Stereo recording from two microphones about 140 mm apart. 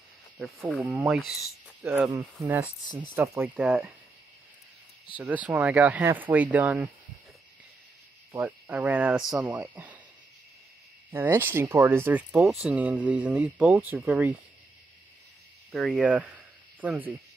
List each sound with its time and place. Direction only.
1.0 s speech: centre (ahead or behind)
2.0 s speech: 25° right (ahead or behind)
5.1 s speech: 10° right (ahead or behind)
8.4 s speech: 10° right (ahead or behind)
11.1 s speech: 15° right (ahead or behind)
15.7 s speech: centre (ahead or behind)